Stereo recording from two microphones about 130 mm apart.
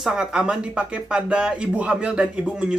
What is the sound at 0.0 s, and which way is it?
Speech, 5° right (ahead or behind).